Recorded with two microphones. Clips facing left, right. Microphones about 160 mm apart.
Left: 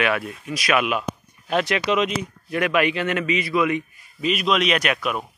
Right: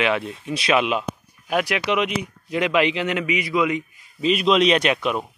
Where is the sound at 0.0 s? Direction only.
25° right (ahead or behind).